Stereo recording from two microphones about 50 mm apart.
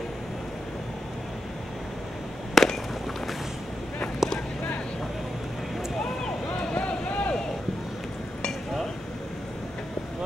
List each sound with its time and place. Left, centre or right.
2.5 s fireworks: centre
4.2 s a sound: centre
6.7 s vehicle: left